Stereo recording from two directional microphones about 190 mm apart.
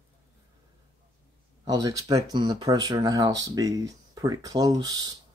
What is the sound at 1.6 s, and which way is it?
Speech, 20° right (ahead or behind).